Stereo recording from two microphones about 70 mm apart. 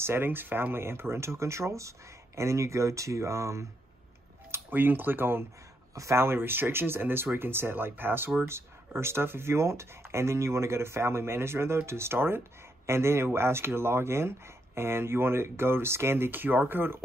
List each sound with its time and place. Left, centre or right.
0.0 s speech: right
4.5 s speech: right
5.9 s speech: right